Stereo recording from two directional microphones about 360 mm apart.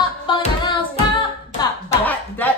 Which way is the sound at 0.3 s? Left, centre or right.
Centre.